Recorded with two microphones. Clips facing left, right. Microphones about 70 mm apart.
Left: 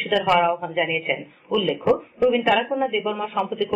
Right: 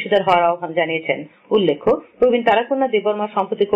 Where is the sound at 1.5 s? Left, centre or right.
Centre.